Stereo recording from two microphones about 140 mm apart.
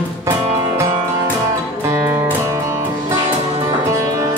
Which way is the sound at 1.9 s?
20° right (ahead or behind).